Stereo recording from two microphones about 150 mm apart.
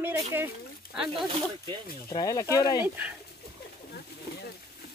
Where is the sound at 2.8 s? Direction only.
10° right (ahead or behind).